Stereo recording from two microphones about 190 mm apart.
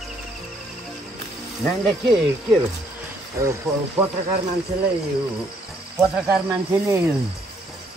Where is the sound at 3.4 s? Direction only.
15° right (ahead or behind).